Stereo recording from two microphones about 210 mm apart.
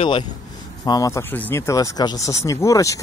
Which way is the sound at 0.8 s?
15° left (ahead or behind).